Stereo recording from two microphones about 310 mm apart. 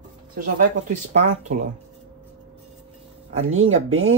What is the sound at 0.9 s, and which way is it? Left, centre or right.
Speech, right.